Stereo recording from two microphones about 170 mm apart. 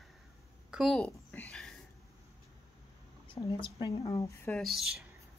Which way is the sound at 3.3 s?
30° left (ahead or behind).